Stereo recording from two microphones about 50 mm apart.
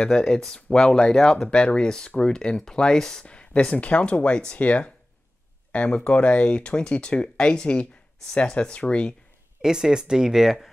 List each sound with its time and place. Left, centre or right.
0.0 s speech: centre
3.3 s speech: left
9.6 s speech: centre